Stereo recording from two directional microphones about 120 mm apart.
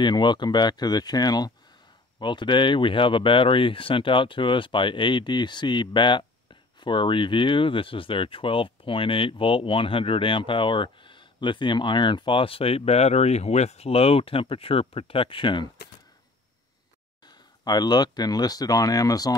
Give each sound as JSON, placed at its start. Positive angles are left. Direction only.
{"t": 0.0, "sound": "speech", "side_deg": 40}
{"t": 17.3, "sound": "speech", "side_deg": 35}